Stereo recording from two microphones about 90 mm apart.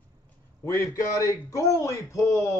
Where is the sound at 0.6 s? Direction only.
30° left (ahead or behind).